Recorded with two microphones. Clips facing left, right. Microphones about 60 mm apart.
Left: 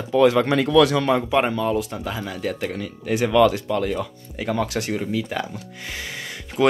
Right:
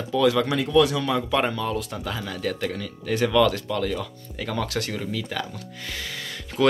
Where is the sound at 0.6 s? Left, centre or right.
Left.